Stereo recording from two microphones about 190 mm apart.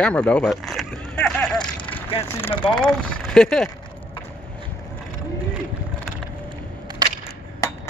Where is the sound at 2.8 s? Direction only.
5° left (ahead or behind).